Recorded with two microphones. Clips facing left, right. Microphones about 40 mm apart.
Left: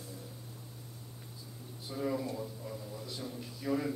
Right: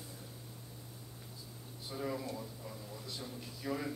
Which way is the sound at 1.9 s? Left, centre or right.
Centre.